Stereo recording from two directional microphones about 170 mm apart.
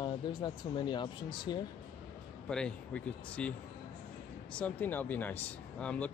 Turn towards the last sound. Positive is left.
turn(degrees=10)  # may be behind; listen again after turning